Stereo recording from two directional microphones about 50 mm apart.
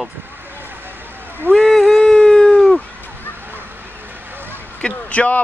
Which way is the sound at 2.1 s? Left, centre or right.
Centre.